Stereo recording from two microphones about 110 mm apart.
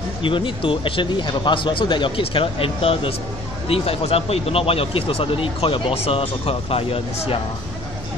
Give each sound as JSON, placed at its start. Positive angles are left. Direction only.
{"t": 0.2, "sound": "speech", "side_deg": 50}